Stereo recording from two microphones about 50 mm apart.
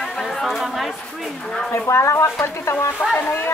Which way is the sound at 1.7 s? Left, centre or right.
Left.